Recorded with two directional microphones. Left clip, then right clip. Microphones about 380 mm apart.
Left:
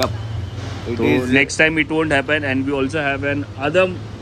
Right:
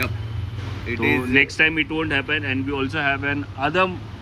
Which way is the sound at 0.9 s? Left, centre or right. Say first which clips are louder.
Left 3 dB; left.